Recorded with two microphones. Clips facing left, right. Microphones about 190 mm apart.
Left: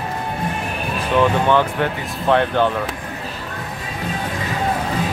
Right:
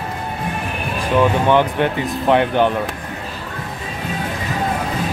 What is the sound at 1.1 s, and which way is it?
Speech, 15° right (ahead or behind).